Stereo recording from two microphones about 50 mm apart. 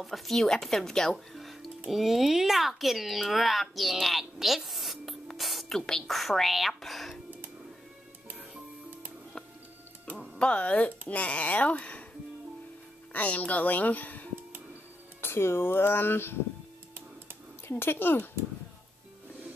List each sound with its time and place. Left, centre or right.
0.0 s a child's voice: centre
5.8 s speech: centre
10.4 s speech: left
13.1 s speech: left
15.2 s speech: left
17.6 s speech: left